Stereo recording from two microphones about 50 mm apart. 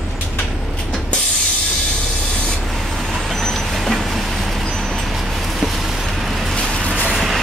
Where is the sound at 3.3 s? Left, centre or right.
Centre.